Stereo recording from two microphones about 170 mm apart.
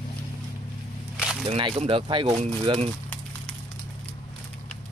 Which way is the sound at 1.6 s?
30° right (ahead or behind).